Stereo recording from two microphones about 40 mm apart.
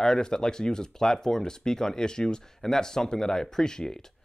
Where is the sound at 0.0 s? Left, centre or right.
Centre.